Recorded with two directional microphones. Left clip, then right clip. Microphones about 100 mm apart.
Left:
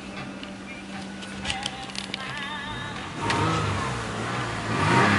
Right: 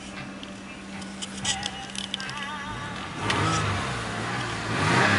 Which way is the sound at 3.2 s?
25° right (ahead or behind).